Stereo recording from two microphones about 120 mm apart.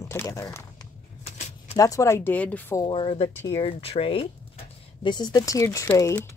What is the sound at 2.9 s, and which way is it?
Speech, 50° left (ahead or behind).